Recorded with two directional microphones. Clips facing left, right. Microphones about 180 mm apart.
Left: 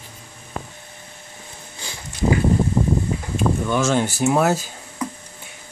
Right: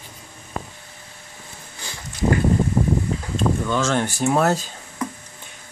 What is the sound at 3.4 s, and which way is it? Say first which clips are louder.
Speech: left 1 dB; 10° left (ahead or behind).